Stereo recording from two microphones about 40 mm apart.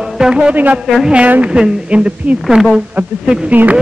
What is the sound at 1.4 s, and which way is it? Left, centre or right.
Speech, right.